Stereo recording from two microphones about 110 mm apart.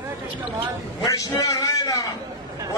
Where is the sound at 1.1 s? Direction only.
30° left (ahead or behind).